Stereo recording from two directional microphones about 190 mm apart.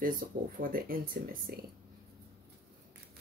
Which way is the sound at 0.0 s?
50° right (ahead or behind).